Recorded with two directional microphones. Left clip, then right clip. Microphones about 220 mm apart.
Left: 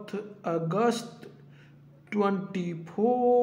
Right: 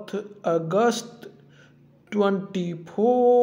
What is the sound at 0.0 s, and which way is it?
Speech, 15° right (ahead or behind).